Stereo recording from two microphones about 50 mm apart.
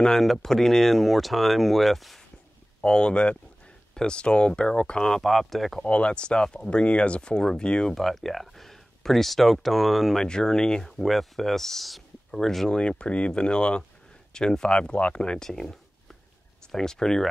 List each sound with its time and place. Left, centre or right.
0.0 s speech: centre
2.8 s speech: centre
5.0 s speech: centre
5.9 s speech: left
8.0 s speech: centre
10.2 s speech: centre
10.9 s speech: centre